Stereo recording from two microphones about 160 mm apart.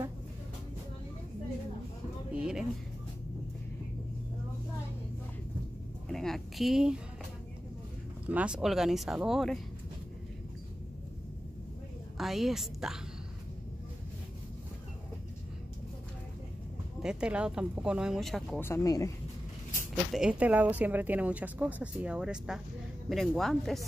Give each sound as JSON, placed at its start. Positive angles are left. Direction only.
{"t": 2.3, "sound": "a sound", "side_deg": -5}
{"t": 6.0, "sound": "a sound", "side_deg": 0}
{"t": 8.3, "sound": "speech", "side_deg": -10}
{"t": 12.2, "sound": "speech", "side_deg": 0}
{"t": 17.0, "sound": "speech", "side_deg": -5}
{"t": 18.6, "sound": "speech", "side_deg": 15}
{"t": 20.1, "sound": "speech", "side_deg": -5}